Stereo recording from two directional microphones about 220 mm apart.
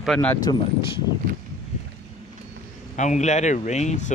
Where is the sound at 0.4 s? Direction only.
20° left (ahead or behind).